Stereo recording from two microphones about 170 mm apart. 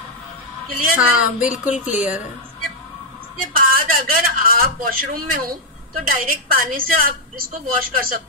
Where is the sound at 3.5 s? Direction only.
60° right (ahead or behind).